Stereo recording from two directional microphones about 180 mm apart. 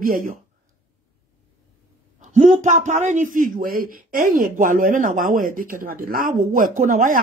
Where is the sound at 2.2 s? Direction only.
45° right (ahead or behind).